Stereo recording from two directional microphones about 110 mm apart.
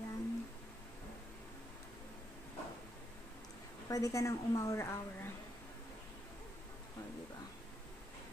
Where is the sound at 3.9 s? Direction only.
30° left (ahead or behind).